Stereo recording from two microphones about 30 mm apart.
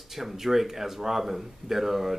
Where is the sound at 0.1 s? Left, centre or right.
Centre.